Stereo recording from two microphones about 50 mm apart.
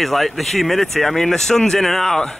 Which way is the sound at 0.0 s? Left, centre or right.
Centre.